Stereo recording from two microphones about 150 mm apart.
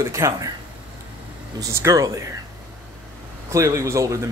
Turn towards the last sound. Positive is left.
turn(degrees=-20)  # may be behind; listen again after turning